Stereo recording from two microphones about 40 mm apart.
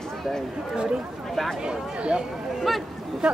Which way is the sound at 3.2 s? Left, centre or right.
Centre.